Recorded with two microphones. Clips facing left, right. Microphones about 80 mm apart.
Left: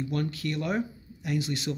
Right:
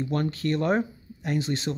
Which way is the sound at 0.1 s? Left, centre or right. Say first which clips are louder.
Right 4 dB; right.